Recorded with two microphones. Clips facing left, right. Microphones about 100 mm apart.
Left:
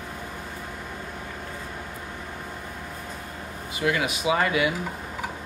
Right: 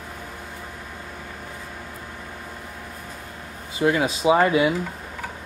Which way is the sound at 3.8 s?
30° right (ahead or behind).